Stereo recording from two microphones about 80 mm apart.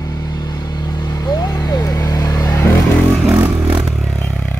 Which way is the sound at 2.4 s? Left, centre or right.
Left.